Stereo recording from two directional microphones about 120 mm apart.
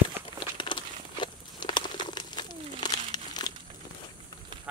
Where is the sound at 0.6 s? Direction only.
40° left (ahead or behind).